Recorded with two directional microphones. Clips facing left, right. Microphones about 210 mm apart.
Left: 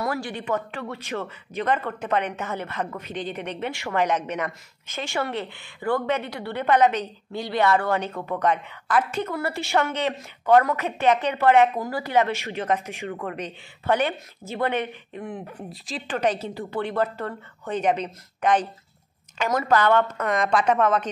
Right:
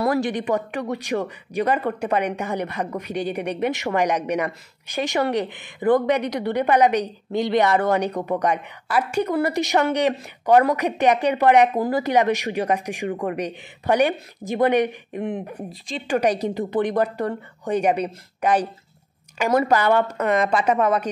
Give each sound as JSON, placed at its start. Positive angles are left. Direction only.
{"t": 0.2, "sound": "speech", "side_deg": -15}
{"t": 15.5, "sound": "speech", "side_deg": 0}
{"t": 16.1, "sound": "speech", "side_deg": -10}
{"t": 19.7, "sound": "speech", "side_deg": -10}